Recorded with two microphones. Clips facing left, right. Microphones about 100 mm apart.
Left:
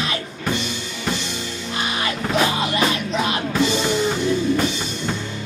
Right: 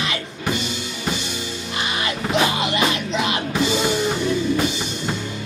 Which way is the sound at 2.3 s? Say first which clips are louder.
Even; 15° right (ahead or behind).